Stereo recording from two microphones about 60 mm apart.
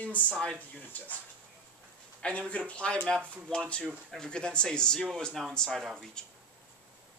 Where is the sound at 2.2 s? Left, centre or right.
Centre.